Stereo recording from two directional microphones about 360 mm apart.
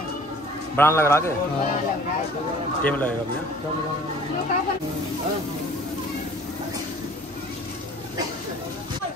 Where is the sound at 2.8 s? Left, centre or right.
Centre.